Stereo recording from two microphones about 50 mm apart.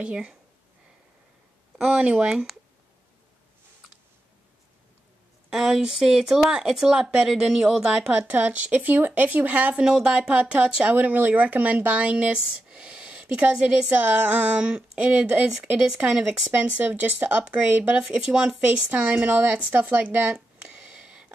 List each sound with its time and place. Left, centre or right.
0.0 s speech: right
1.8 s speech: centre
5.5 s speech: centre
8.1 s speech: right
9.8 s speech: centre
10.9 s speech: right
16.5 s speech: right
17.6 s speech: right
17.9 s speech: centre; by 20.3 s right
20.9 s a sound: right